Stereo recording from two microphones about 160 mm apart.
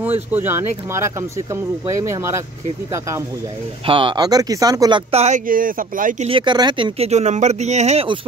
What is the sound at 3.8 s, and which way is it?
Speech, 30° right (ahead or behind).